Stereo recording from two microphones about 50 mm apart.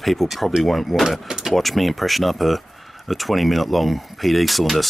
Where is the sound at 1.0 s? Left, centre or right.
Centre.